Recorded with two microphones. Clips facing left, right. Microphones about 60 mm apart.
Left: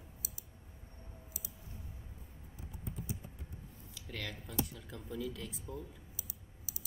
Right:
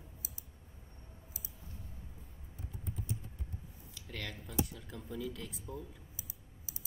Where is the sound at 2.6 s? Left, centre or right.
Centre.